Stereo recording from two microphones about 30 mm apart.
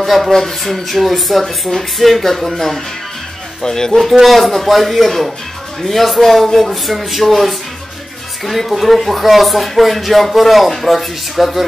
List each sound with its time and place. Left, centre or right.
0.0 s speech: centre
0.3 s speech: centre
0.6 s speech: centre
4.1 s speech: centre